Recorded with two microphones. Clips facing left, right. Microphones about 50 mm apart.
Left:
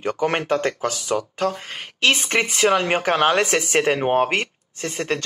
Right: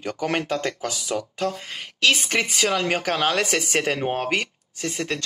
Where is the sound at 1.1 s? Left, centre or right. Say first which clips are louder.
Left 4 dB; centre.